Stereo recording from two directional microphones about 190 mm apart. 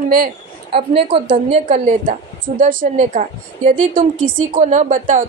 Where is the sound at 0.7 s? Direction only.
30° right (ahead or behind).